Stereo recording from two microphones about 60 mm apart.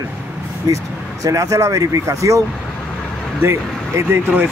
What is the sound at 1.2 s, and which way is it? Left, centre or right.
Speech, right.